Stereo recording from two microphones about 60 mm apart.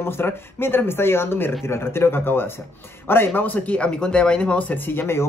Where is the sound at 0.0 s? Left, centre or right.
Left.